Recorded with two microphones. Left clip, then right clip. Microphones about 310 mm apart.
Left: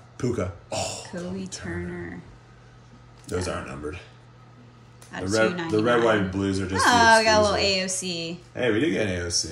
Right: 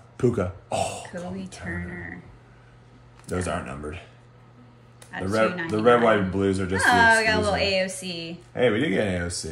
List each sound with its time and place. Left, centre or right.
0.2 s a sound: centre
1.1 s speech: centre
3.3 s speech: right
5.1 s speech: centre
5.9 s speech: right
6.7 s speech: centre
8.5 s speech: right